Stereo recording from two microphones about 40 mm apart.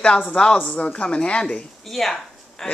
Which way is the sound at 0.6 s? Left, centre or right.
Left.